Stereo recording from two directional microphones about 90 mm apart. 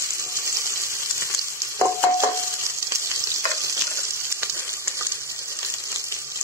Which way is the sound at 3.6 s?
30° right (ahead or behind).